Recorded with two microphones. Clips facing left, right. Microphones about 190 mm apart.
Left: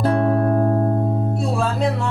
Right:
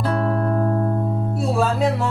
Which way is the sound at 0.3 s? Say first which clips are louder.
Left 3 dB; 40° left (ahead or behind).